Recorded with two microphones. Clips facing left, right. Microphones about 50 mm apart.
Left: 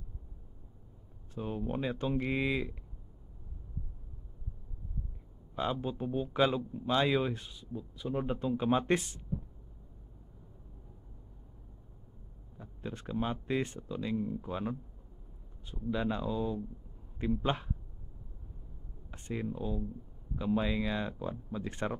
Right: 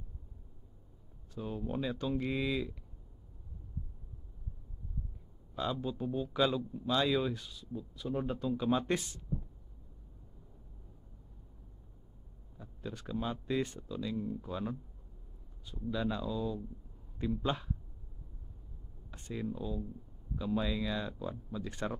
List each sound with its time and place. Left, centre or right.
1.3 s speech: left
5.6 s speech: left
12.5 s speech: left
19.0 s speech: left